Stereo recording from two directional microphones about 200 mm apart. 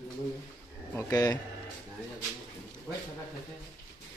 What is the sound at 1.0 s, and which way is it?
Speech, 15° left (ahead or behind).